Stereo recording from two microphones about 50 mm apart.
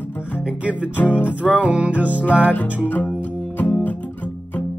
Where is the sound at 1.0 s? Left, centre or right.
Left.